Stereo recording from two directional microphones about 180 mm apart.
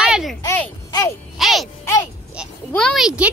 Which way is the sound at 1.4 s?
Centre (ahead or behind).